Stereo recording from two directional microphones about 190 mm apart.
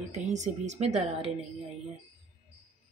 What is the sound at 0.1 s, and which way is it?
Speech, 35° right (ahead or behind).